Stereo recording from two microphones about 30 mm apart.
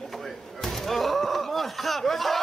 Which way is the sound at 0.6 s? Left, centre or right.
Centre.